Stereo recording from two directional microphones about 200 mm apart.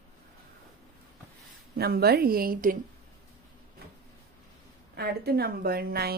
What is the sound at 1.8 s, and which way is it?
A woman's voice, 50° right (ahead or behind).